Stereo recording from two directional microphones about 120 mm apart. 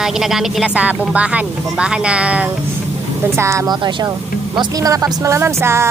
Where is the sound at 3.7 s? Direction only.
40° right (ahead or behind).